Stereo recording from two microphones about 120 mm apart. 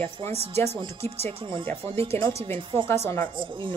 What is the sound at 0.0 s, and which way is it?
Speech, 60° right (ahead or behind).